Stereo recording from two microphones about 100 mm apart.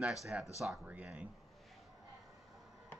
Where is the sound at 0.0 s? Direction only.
5° right (ahead or behind).